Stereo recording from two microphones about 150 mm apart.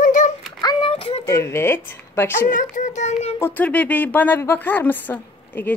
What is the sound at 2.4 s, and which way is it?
Child singing, 60° left (ahead or behind).